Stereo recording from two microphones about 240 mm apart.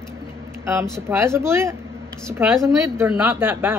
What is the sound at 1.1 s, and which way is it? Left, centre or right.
Speech, centre.